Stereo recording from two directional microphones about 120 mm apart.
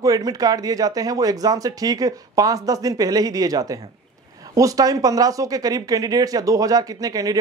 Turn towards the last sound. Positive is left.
turn(degrees=-30)  # may be behind; listen again after turning